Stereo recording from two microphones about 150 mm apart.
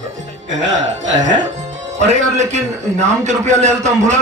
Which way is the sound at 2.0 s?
50° right (ahead or behind).